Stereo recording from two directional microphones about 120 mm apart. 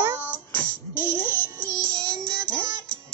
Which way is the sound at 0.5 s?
15° left (ahead or behind).